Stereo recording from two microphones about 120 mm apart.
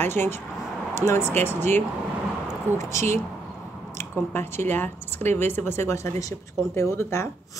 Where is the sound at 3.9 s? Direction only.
20° left (ahead or behind).